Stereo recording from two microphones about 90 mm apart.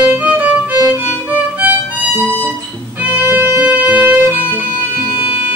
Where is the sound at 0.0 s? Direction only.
20° right (ahead or behind).